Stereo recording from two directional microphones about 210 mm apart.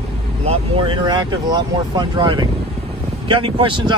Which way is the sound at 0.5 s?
25° right (ahead or behind).